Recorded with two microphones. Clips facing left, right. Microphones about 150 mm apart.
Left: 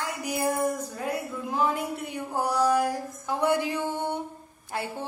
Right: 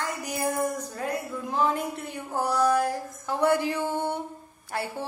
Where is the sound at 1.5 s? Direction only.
5° left (ahead or behind).